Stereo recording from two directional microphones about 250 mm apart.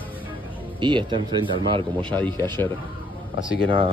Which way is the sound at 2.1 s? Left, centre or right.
Centre.